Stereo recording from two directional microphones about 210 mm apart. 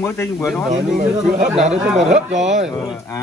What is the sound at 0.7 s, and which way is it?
Speech, 40° right (ahead or behind).